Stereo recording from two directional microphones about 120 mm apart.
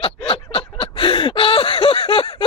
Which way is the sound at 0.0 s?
55° left (ahead or behind).